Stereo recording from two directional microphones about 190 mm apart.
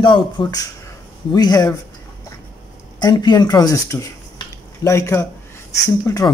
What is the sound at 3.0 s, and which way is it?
Speech, 20° left (ahead or behind).